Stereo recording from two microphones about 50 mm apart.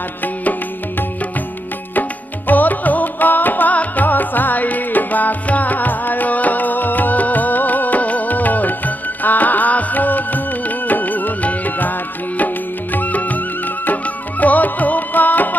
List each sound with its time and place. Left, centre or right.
0.2 s music: left
12.9 s music: left